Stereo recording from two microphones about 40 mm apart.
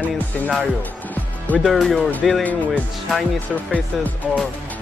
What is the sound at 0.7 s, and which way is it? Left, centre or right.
Music, left.